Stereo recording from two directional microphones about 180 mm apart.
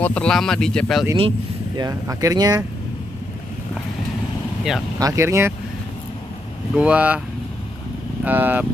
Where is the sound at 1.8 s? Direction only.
20° right (ahead or behind).